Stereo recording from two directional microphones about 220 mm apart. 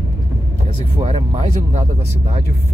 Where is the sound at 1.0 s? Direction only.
25° right (ahead or behind).